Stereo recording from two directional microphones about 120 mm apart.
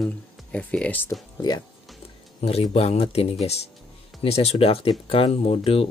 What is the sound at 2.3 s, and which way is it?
Speech, 60° left (ahead or behind).